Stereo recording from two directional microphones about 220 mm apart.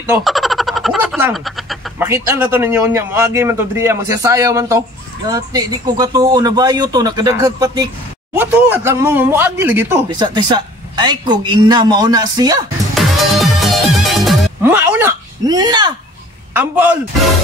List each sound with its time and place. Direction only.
0.0 s a sound: 5° right (ahead or behind)
2.0 s a man's voice: 10° right (ahead or behind)
12.9 s music: centre (ahead or behind)
14.6 s speech: 10° right (ahead or behind)
16.5 s a man's voice: 10° right (ahead or behind)